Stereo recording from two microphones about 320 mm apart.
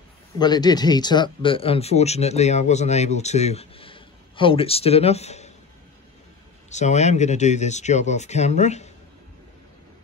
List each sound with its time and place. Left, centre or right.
0.4 s speech: centre
6.7 s speech: left